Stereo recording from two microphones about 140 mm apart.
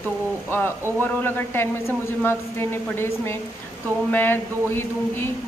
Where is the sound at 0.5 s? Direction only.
15° left (ahead or behind).